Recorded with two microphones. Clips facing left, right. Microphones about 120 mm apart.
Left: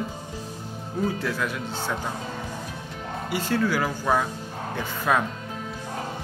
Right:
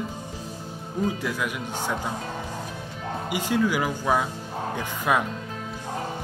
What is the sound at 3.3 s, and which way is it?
Speech, 15° right (ahead or behind).